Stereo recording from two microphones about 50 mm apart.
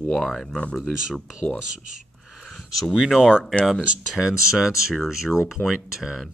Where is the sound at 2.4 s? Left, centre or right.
Centre.